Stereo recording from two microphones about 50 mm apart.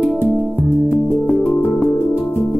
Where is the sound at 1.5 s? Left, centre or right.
Left.